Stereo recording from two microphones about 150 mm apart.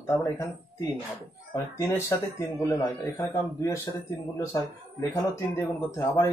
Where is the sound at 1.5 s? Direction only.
20° left (ahead or behind).